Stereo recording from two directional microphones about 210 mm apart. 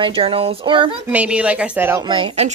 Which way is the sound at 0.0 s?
25° right (ahead or behind).